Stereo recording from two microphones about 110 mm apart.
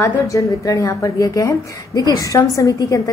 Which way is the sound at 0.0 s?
30° left (ahead or behind).